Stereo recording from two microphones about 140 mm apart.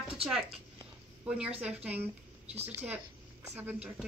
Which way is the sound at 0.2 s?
5° right (ahead or behind).